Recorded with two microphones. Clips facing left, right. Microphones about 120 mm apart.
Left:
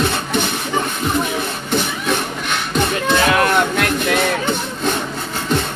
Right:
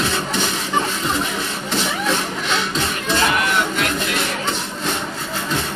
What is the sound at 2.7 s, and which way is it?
Music, 75° left (ahead or behind).